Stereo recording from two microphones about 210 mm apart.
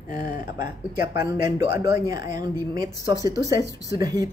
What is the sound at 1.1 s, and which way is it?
Speech, 15° right (ahead or behind).